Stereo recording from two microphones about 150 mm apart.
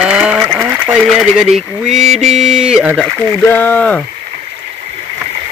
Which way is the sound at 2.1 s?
50° right (ahead or behind).